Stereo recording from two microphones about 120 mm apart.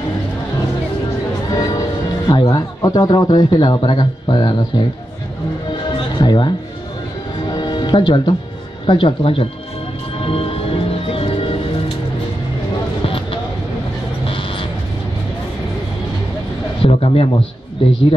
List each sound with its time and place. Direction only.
1.5 s speech: 30° left (ahead or behind)
5.9 s music: 40° left (ahead or behind)
7.5 s music: 40° left (ahead or behind)
8.8 s speech: 45° left (ahead or behind)
10.2 s music: 50° left (ahead or behind)
14.3 s vehicle: 45° left (ahead or behind)
16.8 s a man's voice: 50° left (ahead or behind)